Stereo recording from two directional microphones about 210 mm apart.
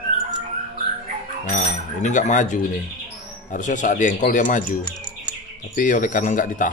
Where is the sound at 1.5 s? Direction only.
35° left (ahead or behind).